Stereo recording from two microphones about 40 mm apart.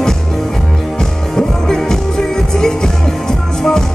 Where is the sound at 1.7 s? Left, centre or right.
Centre.